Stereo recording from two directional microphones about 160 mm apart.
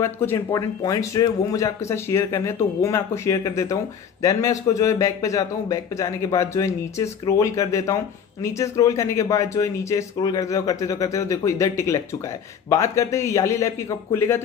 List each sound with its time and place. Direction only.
0.0 s speech: 15° left (ahead or behind)